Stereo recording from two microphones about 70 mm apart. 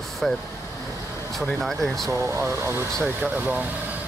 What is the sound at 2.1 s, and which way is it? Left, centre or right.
Speech, right.